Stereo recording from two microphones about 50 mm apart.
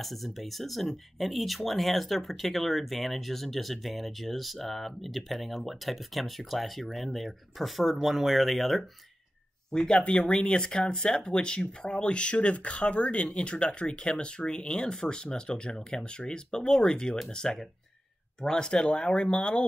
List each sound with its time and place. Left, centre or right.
0.0 s speech: centre
9.7 s speech: centre